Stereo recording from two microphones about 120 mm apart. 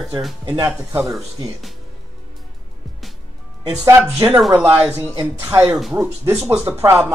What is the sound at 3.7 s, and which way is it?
Speech, 20° right (ahead or behind).